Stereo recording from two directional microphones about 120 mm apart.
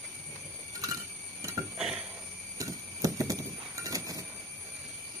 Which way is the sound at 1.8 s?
5° right (ahead or behind).